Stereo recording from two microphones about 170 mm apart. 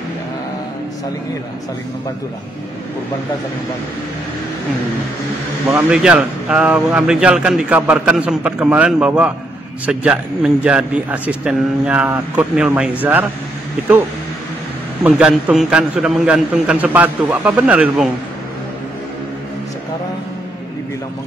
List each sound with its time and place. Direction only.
5.9 s speech: 5° right (ahead or behind)
15.0 s speech: 5° right (ahead or behind)